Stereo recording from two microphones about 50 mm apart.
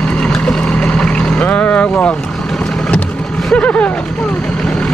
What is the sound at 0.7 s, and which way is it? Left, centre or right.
Vehicle, left.